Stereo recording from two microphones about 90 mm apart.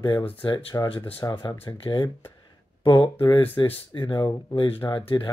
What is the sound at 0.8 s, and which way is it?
Speech, 90° left.